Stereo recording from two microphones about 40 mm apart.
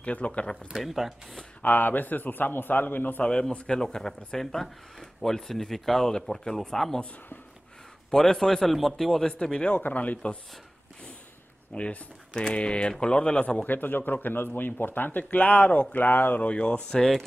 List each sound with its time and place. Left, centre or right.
0.0 s speech: left
0.7 s speech: centre
1.6 s a man's voice: left
3.3 s speech: left
8.1 s speech: centre
9.3 s speech: left
9.8 s speech: left
11.7 s speech: left
13.7 s a man's voice: left
16.4 s speech: left